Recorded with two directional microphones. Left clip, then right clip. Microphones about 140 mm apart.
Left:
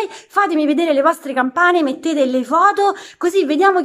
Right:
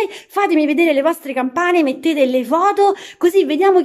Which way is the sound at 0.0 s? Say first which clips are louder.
Left 1 dB; 10° right (ahead or behind).